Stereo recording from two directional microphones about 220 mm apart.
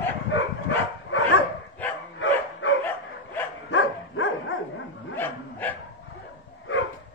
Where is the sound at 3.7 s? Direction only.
60° left (ahead or behind).